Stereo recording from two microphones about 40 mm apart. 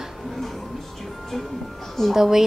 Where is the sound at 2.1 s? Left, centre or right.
Centre.